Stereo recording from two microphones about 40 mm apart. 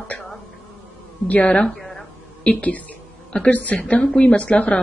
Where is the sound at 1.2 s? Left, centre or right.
Left.